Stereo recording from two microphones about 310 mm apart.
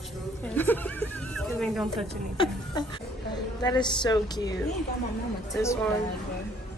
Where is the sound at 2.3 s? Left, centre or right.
Centre.